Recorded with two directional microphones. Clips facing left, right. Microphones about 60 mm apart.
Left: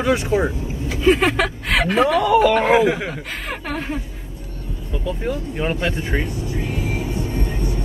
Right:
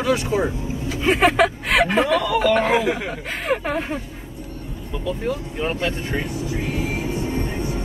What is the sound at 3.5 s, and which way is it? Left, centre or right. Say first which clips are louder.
Speech: right 5 dB; centre.